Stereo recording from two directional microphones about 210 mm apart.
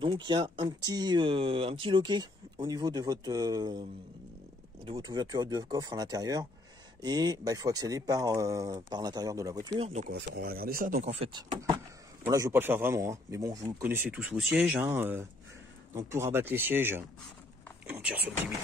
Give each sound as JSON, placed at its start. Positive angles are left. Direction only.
{"t": 0.0, "sound": "speech", "side_deg": -25}
{"t": 4.8, "sound": "speech", "side_deg": -20}
{"t": 10.1, "sound": "speech", "side_deg": -55}